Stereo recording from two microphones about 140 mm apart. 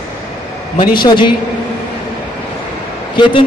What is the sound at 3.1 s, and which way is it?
Speech, 35° left (ahead or behind).